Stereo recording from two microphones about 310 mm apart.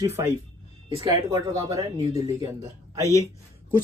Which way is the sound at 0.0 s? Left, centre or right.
Centre.